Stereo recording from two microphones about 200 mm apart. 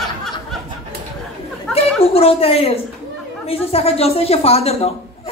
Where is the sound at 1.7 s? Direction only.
5° left (ahead or behind).